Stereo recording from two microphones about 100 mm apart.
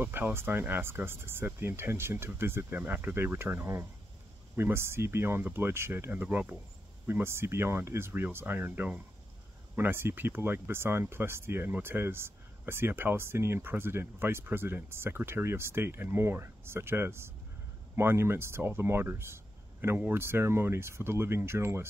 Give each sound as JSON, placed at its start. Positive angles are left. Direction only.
{"t": 0.0, "sound": "speech", "side_deg": -20}